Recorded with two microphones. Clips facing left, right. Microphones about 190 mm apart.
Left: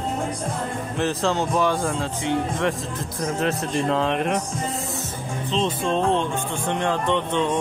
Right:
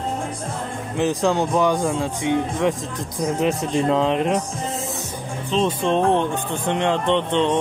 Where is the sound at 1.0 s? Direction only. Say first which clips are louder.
Right 4 dB; 15° right (ahead or behind).